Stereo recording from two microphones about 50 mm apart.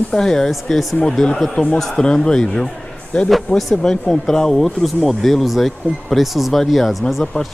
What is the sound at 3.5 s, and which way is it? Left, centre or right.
Speech, centre.